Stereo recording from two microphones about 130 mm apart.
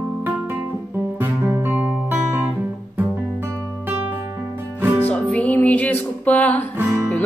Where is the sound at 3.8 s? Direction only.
15° right (ahead or behind).